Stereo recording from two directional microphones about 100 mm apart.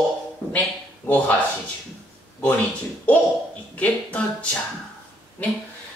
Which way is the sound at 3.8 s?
15° left (ahead or behind).